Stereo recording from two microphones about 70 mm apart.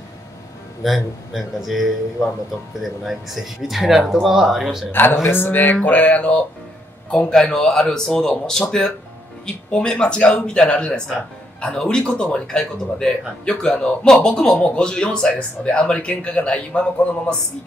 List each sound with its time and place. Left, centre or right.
0.8 s a man's voice: centre
5.1 s speech: left; by 17.4 s centre